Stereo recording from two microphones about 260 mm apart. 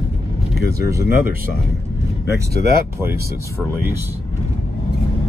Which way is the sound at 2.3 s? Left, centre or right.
Right.